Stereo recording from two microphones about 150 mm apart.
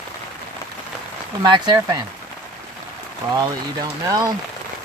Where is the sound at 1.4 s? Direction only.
25° right (ahead or behind).